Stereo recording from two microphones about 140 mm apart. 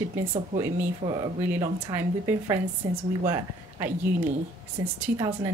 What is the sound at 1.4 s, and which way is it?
Speech, 15° right (ahead or behind).